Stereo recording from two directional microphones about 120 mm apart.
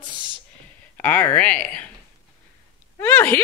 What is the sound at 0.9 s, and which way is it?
Speech, 15° left (ahead or behind).